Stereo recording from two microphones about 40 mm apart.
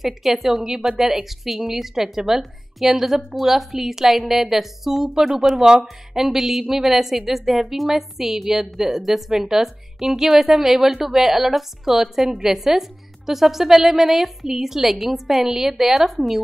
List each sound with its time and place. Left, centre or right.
0.0 s a woman's voice: centre